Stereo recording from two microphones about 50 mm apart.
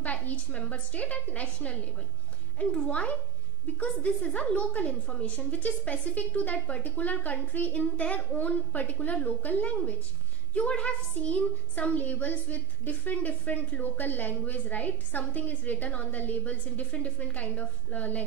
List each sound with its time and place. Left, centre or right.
0.0 s a woman's voice: left
2.6 s speech: centre
2.9 s a woman's voice: left
11.1 s a woman's voice: left